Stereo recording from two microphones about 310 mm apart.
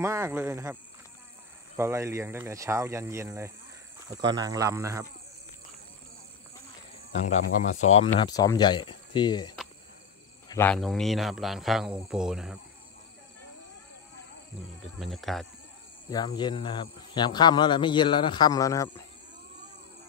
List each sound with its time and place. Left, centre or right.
0.0 s speech: centre
1.8 s speech: centre
7.1 s speech: left; by 12.5 s centre
15.0 s speech: centre
16.1 s speech: centre